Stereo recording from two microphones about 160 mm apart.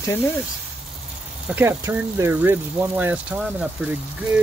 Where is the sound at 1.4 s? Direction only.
15° right (ahead or behind).